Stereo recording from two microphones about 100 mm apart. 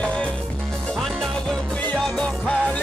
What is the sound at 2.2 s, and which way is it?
Music, 10° left (ahead or behind).